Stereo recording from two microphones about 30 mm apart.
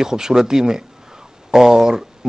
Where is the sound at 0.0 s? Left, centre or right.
Right.